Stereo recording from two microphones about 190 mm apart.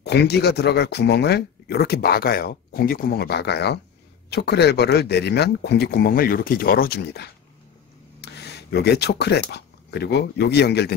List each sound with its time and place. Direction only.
0.0 s speech: 60° left (ahead or behind)